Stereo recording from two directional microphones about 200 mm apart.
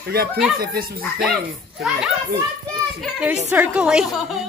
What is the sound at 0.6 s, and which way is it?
Speech, 50° right (ahead or behind).